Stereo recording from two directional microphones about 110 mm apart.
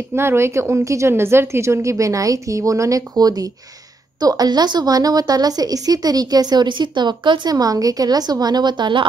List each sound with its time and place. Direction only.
0.1 s a woman's voice: 20° right (ahead or behind); by 9.0 s 45° right (ahead or behind)